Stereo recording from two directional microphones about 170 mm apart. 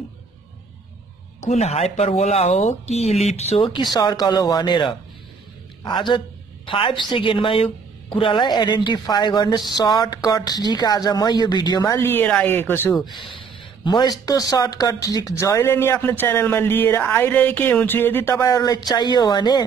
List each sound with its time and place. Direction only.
1.4 s a woman's voice: 40° left (ahead or behind); by 12.9 s 10° left (ahead or behind)
13.0 s speech: 30° left (ahead or behind)